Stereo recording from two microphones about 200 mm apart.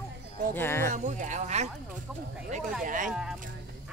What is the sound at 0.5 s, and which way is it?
Speech, 10° left (ahead or behind).